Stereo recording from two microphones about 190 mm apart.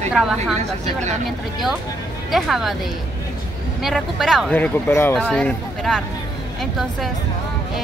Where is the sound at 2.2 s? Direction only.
Centre (ahead or behind).